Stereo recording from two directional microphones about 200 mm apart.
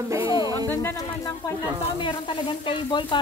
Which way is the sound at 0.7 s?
10° left (ahead or behind).